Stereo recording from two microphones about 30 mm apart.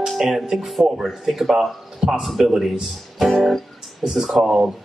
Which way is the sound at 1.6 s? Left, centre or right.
Centre.